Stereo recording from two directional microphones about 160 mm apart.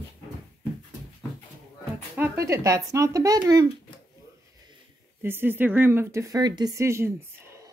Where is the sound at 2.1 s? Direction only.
15° right (ahead or behind).